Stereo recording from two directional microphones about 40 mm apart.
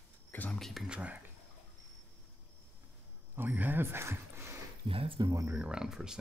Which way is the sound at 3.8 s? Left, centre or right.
Right.